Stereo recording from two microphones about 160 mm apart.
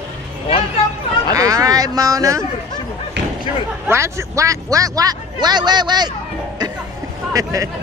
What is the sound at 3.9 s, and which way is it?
A man's voice, 15° right (ahead or behind).